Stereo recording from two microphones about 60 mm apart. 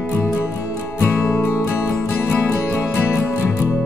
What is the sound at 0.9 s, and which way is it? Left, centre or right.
Music, left.